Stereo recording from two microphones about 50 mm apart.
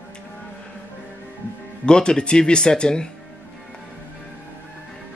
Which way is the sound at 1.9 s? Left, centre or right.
Centre.